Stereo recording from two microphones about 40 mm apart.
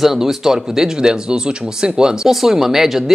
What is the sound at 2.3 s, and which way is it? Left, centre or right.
Speech, centre.